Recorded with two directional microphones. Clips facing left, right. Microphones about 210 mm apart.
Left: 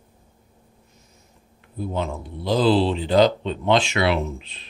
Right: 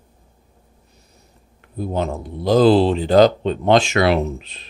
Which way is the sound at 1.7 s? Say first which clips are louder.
Right 4 dB; 40° right (ahead or behind).